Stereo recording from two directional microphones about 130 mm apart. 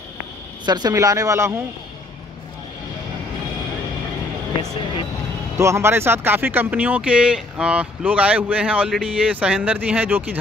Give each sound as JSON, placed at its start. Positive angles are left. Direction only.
{"t": 0.7, "sound": "a man's voice", "side_deg": -30}
{"t": 5.6, "sound": "speech", "side_deg": -20}